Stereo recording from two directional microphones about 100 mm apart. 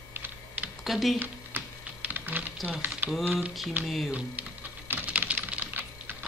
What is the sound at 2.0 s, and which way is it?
Typing, 15° right (ahead or behind).